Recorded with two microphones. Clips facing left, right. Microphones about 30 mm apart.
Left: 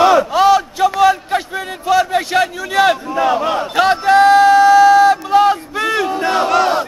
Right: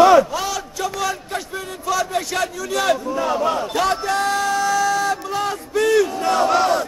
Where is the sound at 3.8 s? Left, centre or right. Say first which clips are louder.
Left 13 dB; left.